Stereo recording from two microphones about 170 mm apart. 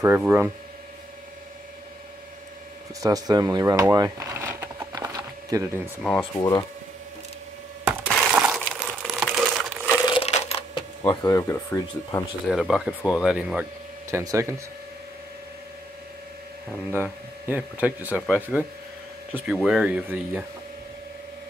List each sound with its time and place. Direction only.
0.0 s speech: 10° right (ahead or behind)
3.0 s a sound: 20° right (ahead or behind)
6.0 s speech: 10° left (ahead or behind)
8.4 s crumpling: 5° right (ahead or behind)
10.0 s coin: 35° left (ahead or behind)
11.0 s speech: 20° left (ahead or behind)
12.4 s speech: centre (ahead or behind)
14.1 s speech: 15° right (ahead or behind)
16.9 s speech: 10° right (ahead or behind)